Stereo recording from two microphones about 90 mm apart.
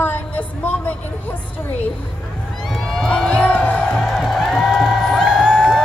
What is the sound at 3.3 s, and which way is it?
Speech, 15° left (ahead or behind).